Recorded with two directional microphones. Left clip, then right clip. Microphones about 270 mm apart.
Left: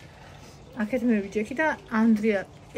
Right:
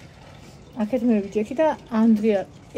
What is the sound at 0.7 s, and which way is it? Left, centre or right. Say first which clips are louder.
Speech: right 3 dB; centre.